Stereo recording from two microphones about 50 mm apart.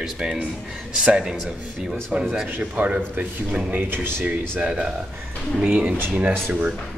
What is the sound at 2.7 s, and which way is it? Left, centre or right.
Speech, right.